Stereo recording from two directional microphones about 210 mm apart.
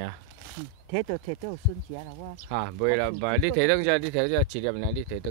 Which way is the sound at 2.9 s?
55° right (ahead or behind).